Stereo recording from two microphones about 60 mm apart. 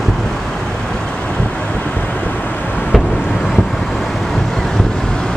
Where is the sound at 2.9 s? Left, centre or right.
Centre.